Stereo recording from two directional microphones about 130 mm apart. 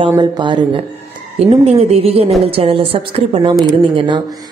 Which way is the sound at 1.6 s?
50° right (ahead or behind).